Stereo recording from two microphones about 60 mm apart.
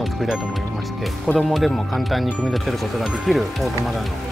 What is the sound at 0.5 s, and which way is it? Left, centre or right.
Speech, centre.